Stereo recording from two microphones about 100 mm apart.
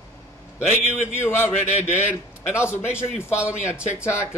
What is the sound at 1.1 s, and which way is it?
Speech, 20° left (ahead or behind).